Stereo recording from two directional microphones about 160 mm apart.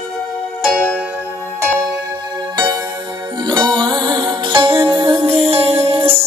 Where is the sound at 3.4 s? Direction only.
30° right (ahead or behind).